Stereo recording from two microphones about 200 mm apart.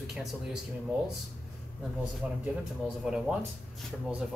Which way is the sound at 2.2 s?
5° right (ahead or behind).